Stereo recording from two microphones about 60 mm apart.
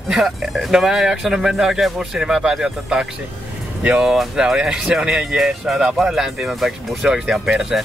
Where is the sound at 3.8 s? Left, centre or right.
Right.